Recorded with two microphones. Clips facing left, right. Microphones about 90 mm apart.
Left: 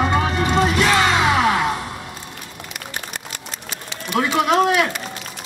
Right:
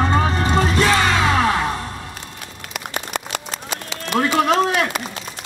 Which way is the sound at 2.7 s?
90° right.